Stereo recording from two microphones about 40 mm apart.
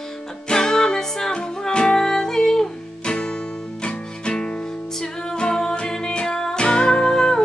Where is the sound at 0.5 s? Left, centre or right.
Centre.